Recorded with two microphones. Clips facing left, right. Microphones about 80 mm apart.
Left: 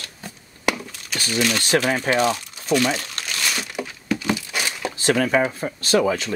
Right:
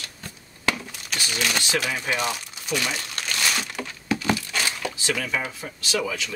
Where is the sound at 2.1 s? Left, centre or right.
Left.